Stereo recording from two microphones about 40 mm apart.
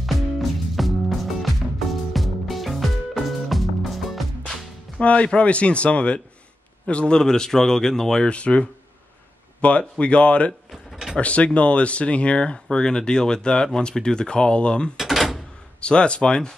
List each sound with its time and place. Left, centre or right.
0.0 s music: centre
4.9 s speech: left
7.2 s speech: centre
8.3 s speech: left
10.7 s drawer open or close: centre
11.1 s speech: left
12.6 s speech: centre
15.0 s drawer open or close: centre
15.8 s speech: left